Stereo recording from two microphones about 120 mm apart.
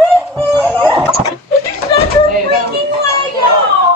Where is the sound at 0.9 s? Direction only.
5° left (ahead or behind).